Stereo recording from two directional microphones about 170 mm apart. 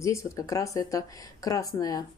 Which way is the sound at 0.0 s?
20° left (ahead or behind).